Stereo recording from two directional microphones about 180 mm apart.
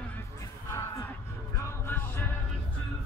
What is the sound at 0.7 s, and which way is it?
Music, 15° left (ahead or behind).